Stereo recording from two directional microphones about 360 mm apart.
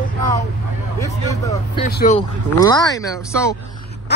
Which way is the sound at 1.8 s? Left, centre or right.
Left.